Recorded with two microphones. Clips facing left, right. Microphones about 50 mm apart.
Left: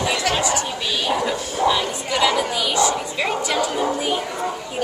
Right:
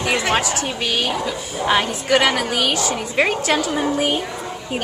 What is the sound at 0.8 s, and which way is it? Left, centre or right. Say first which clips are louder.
A woman's voice: even; right.